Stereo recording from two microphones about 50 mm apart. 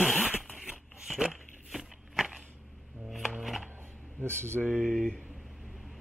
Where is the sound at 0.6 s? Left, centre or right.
Centre.